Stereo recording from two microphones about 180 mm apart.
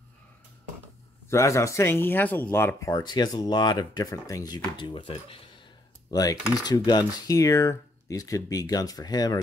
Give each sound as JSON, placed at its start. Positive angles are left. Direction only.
{"t": 1.3, "sound": "speech", "side_deg": 15}
{"t": 6.0, "sound": "speech", "side_deg": 20}